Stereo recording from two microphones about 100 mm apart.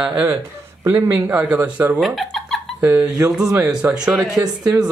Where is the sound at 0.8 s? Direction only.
20° right (ahead or behind).